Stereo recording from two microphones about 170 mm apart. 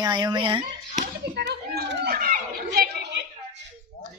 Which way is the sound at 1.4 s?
70° right (ahead or behind).